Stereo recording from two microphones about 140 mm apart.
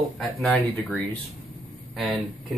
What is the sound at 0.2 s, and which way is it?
Speech, centre (ahead or behind).